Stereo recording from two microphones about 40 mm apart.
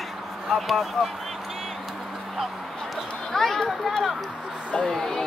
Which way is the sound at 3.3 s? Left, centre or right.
Centre.